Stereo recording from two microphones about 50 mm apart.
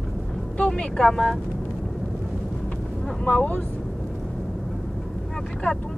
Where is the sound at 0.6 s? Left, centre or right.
Centre.